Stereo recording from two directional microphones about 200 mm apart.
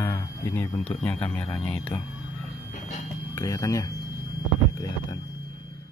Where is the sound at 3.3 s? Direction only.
15° left (ahead or behind).